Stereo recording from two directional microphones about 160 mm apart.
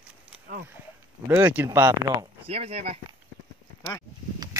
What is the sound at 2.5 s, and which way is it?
Speech, 35° right (ahead or behind).